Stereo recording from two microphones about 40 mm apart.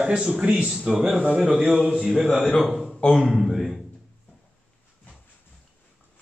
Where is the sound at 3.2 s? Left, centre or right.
Centre.